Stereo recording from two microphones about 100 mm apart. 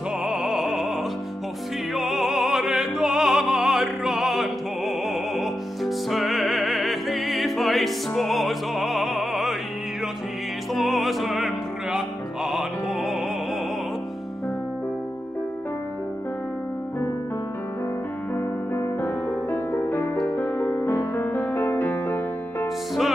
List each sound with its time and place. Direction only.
0.2 s opera: 5° right (ahead or behind)
2.0 s music: centre (ahead or behind)
10.7 s music: centre (ahead or behind)
18.3 s music: 20° left (ahead or behind)